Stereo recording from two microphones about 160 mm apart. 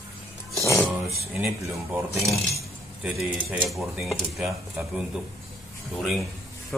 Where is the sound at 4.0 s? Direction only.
Centre (ahead or behind).